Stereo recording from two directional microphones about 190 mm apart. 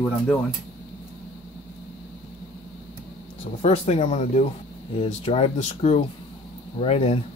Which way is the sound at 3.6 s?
30° left (ahead or behind).